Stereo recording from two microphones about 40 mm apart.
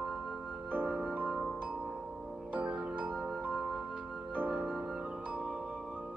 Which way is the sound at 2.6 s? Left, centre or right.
Right.